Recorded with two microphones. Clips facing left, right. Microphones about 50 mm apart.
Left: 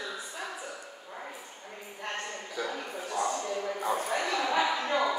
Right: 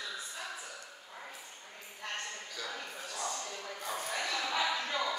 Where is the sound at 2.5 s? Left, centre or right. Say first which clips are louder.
Left 7 dB; centre.